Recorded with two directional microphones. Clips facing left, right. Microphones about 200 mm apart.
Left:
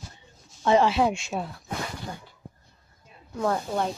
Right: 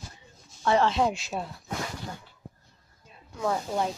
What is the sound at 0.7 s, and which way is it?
Speech, 15° left (ahead or behind).